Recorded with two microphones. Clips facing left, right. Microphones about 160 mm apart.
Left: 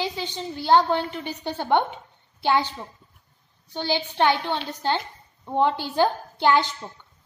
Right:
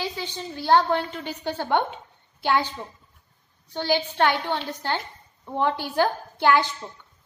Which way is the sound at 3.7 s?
15° left (ahead or behind).